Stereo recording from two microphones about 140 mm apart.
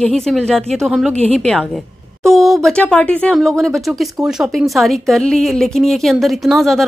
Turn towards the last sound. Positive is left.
turn(degrees=0)  # may be behind; listen again after turning